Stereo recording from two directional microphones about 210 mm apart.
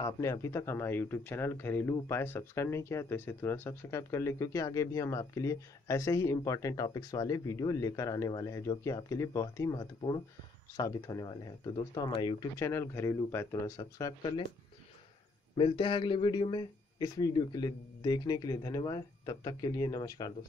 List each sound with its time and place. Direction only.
0.0 s speech: 15° left (ahead or behind)
15.5 s a man's voice: 25° left (ahead or behind)